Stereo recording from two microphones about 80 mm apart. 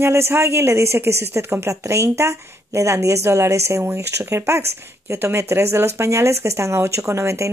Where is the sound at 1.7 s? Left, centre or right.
Right.